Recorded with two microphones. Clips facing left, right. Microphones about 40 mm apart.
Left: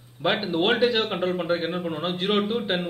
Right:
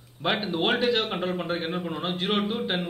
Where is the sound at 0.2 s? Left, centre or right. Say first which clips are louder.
Left 3 dB; centre.